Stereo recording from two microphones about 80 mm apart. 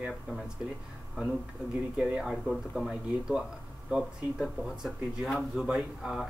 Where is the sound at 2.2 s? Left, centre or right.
Centre.